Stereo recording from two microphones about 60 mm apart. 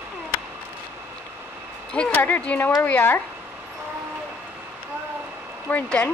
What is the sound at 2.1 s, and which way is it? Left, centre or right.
Speech, left.